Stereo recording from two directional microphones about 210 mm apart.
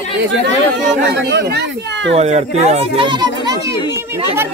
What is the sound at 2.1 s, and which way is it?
A child's voice, 30° right (ahead or behind).